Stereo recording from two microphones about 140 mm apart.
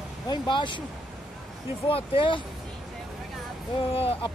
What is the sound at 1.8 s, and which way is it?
Speech, 40° left (ahead or behind).